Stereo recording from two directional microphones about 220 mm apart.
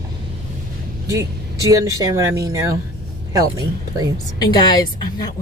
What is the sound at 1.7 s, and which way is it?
Speech, 15° right (ahead or behind).